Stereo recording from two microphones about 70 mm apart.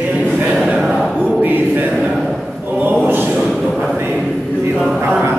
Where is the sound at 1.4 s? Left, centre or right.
Right.